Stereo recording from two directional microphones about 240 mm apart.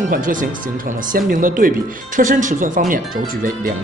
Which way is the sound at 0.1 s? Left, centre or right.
Right.